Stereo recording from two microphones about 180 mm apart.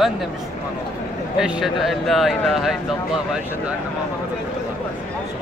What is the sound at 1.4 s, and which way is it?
Speech, centre (ahead or behind).